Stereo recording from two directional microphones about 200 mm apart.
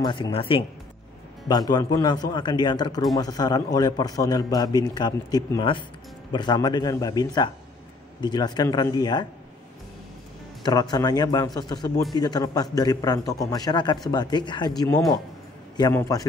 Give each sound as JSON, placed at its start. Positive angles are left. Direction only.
{"t": 0.0, "sound": "a man's voice", "side_deg": 25}
{"t": 10.6, "sound": "a man's voice", "side_deg": 20}